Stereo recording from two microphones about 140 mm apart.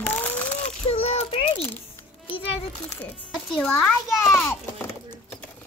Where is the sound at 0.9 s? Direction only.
45° left (ahead or behind).